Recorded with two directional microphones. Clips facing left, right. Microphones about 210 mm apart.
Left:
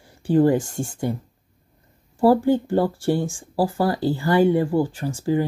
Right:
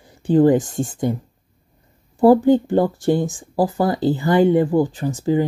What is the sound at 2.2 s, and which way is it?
Speech, 20° right (ahead or behind).